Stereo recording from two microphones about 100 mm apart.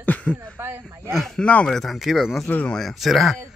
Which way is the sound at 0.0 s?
15° left (ahead or behind).